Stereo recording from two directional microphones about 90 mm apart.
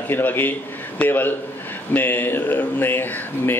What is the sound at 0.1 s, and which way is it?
A man's voice, 20° left (ahead or behind).